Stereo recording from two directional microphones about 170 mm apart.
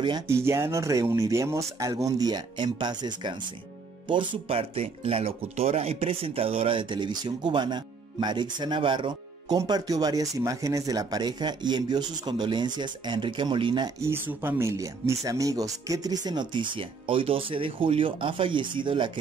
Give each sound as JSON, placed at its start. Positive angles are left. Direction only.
{"t": 0.0, "sound": "speech", "side_deg": -20}